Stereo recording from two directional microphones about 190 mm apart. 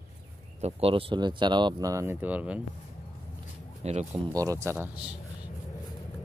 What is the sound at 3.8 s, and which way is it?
Speech, 35° right (ahead or behind).